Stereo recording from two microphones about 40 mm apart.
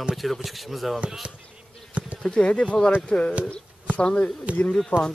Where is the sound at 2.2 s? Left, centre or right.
Left.